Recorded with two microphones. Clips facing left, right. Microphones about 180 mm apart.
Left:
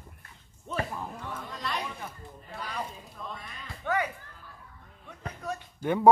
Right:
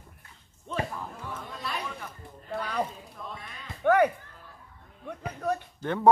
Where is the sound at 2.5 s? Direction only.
60° right (ahead or behind).